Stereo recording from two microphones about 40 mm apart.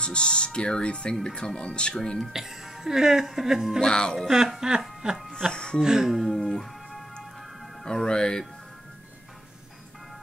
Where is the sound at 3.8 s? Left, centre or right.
Centre.